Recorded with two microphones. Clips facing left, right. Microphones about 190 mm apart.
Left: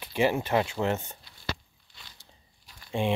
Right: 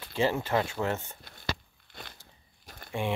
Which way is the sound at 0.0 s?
15° left (ahead or behind).